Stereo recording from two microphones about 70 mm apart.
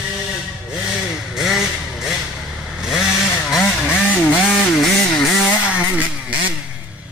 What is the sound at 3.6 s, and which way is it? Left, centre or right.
Vehicle, left.